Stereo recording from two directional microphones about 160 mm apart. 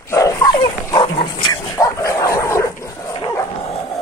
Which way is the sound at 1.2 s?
30° left (ahead or behind).